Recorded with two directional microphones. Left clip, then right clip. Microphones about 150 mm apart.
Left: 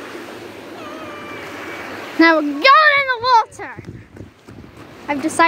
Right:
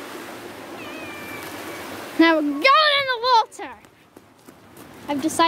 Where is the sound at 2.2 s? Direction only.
15° right (ahead or behind); by 3.6 s 30° right (ahead or behind).